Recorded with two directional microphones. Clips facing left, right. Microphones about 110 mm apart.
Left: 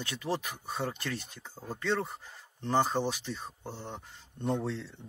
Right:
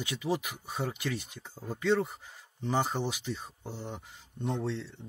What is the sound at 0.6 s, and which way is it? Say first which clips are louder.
Speech: right 1 dB; 10° right (ahead or behind).